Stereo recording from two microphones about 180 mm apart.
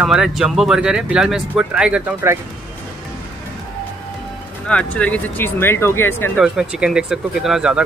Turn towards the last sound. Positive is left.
turn(degrees=-5)  # may be behind; listen again after turning